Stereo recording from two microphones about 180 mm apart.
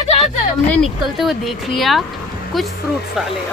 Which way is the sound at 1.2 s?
Centre (ahead or behind).